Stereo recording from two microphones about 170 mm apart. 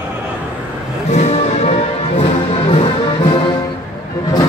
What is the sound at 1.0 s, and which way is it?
Music, 40° left (ahead or behind).